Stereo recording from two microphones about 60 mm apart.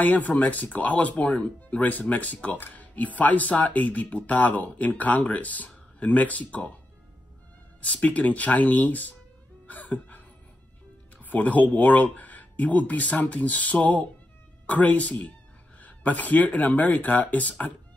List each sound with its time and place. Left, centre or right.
0.0 s speech: left
7.8 s speech: left
9.7 s a sound: left
11.1 s speech: left